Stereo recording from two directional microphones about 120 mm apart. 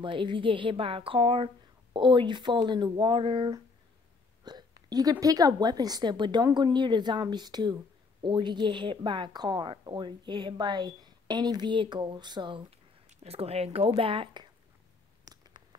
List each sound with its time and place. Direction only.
0.0 s a woman's voice: 45° right (ahead or behind)
4.5 s hiccup: 35° right (ahead or behind)
5.2 s speech: 30° right (ahead or behind)
13.2 s a woman's voice: 55° right (ahead or behind)
15.3 s a sound: 30° right (ahead or behind)